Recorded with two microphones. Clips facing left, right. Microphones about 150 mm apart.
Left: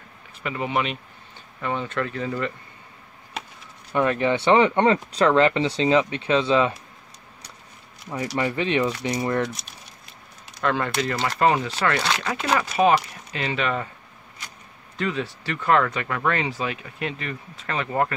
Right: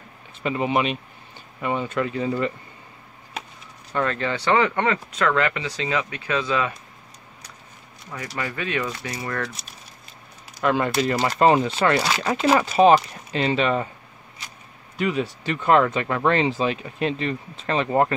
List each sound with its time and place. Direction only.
0.4 s speech: 25° right (ahead or behind)
3.9 s speech: 15° left (ahead or behind)
8.4 s speech: 25° left (ahead or behind)
10.6 s speech: 10° right (ahead or behind)
11.2 s speech: 25° right (ahead or behind)
15.0 s speech: 15° right (ahead or behind)